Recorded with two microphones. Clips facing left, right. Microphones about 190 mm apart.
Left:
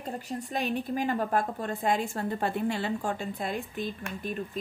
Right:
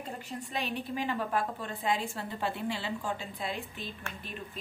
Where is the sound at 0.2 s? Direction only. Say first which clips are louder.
Left 4 dB; 40° left (ahead or behind).